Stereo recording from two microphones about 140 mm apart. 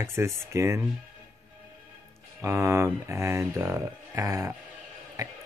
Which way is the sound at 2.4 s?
20° right (ahead or behind).